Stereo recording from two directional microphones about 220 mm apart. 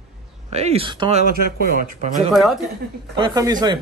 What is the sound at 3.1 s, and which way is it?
Speech, 20° right (ahead or behind).